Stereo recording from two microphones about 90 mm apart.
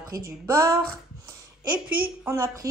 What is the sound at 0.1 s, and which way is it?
Speech, 40° right (ahead or behind).